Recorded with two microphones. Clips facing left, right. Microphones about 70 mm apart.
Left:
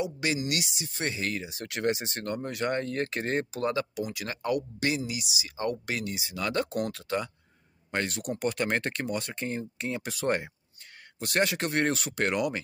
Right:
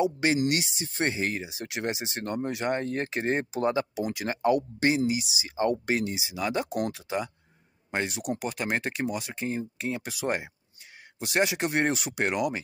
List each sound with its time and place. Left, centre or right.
0.0 s speech: right
6.2 s speech: centre